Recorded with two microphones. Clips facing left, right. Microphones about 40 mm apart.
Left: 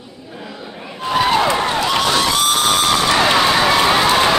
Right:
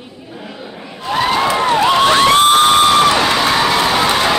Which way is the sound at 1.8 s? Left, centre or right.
Right.